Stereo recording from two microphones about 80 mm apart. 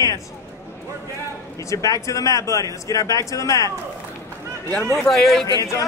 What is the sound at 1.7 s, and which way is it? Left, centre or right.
Speech, left.